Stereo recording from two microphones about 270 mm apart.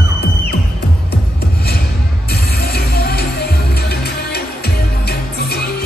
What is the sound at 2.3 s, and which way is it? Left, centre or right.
Music, left.